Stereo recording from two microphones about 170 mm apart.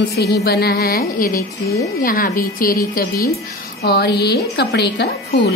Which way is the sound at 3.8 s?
70° left (ahead or behind).